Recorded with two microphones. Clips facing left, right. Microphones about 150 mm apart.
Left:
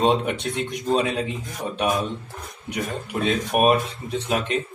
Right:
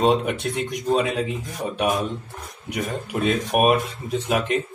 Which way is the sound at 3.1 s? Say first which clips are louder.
Right 1 dB; 5° right (ahead or behind).